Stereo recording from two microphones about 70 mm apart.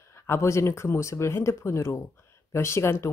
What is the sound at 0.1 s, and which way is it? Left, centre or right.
A woman's voice, left.